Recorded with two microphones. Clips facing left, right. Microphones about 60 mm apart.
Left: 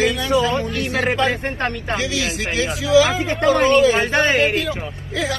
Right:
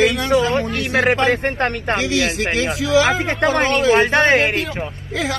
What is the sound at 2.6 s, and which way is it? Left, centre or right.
A man's voice, right.